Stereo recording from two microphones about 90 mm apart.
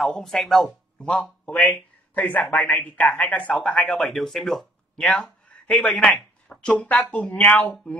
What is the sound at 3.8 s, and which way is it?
Speech, centre (ahead or behind).